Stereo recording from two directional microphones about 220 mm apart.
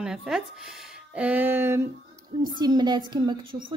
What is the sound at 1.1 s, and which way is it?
Music, 5° right (ahead or behind).